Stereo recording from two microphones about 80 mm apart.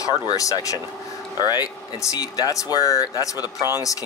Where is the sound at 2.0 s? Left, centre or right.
Left.